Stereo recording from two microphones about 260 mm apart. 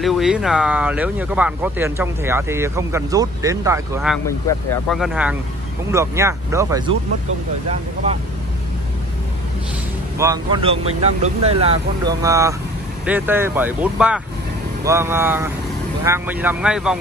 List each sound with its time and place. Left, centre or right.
0.0 s speech: centre
4.8 s speech: centre
10.1 s speech: centre